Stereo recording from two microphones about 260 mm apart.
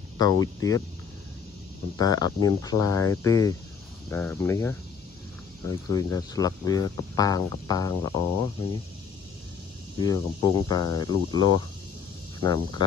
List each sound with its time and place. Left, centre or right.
0.2 s speech: centre
2.0 s speech: centre
9.9 s speech: centre
11.3 s speech: right
12.4 s speech: centre